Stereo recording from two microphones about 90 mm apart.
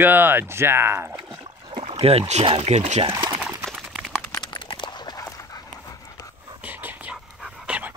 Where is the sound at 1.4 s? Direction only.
85° right.